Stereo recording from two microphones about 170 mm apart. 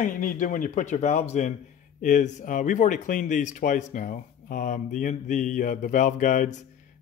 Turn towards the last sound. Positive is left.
turn(degrees=45)  # may be behind; listen again after turning